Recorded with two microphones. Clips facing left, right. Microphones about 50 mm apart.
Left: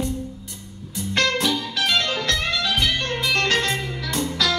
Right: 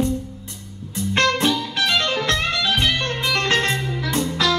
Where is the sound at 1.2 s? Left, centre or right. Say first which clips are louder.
Right 2 dB; right.